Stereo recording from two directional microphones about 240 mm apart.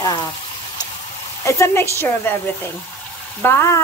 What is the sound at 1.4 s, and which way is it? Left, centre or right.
Speech, centre.